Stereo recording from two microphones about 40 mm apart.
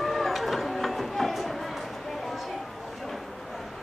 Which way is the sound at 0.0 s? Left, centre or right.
Centre.